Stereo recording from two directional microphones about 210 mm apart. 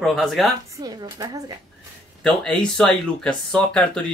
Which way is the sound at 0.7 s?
20° right (ahead or behind).